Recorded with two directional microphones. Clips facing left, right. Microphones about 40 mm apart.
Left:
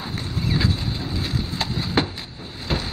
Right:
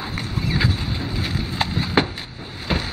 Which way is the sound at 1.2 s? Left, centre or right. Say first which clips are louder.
Right 3 dB; right.